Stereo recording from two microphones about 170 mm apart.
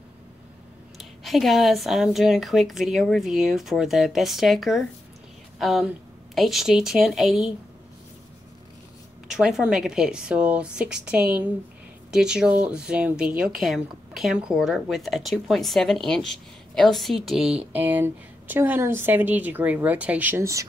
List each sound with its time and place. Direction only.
0.9 s a woman's voice: centre (ahead or behind)
9.3 s a woman's voice: 5° right (ahead or behind)